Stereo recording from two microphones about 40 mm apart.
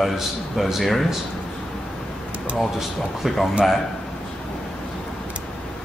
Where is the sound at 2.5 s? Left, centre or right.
Centre.